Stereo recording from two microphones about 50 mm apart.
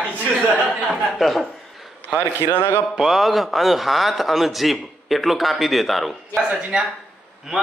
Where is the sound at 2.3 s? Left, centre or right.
Left.